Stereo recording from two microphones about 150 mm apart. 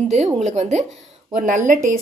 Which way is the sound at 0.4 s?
50° right (ahead or behind).